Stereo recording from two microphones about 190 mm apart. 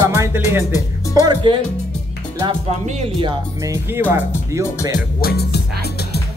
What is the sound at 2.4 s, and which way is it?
Speech, 25° right (ahead or behind).